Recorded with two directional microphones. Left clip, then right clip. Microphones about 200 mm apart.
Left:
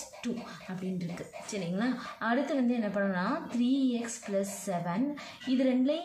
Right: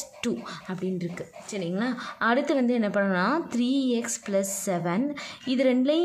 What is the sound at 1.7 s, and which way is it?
Speech, 45° right (ahead or behind).